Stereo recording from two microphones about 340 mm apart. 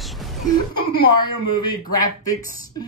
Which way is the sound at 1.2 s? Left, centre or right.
Centre.